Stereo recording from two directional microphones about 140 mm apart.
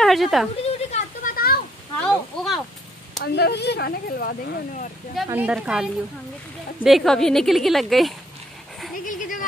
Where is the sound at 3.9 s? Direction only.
90° left.